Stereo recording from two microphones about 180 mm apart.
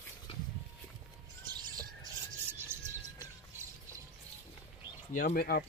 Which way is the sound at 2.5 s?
15° right (ahead or behind).